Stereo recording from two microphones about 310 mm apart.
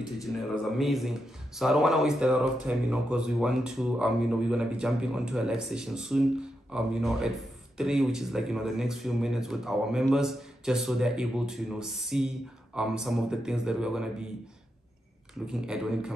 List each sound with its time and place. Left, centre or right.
0.7 s speech: centre
15.4 s speech: centre